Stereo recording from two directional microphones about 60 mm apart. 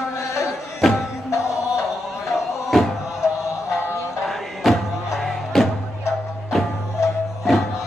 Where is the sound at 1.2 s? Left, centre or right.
Left.